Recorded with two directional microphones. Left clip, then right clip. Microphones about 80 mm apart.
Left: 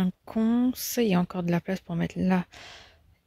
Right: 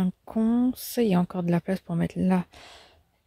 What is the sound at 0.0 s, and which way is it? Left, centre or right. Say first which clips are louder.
Speech: right 1 dB; centre.